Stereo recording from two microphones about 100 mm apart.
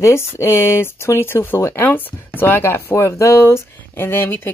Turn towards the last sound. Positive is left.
turn(degrees=20)  # may be behind; listen again after turning